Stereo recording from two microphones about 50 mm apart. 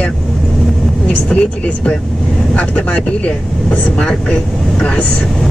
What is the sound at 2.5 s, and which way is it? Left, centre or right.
Speech, left.